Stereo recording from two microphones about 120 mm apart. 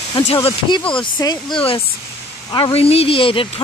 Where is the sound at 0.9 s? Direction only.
40° left (ahead or behind).